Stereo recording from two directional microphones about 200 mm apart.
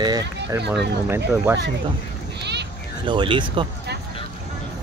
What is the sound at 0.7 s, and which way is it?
Speech, 10° right (ahead or behind).